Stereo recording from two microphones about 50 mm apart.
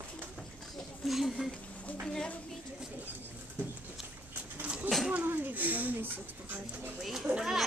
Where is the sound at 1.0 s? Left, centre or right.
Centre.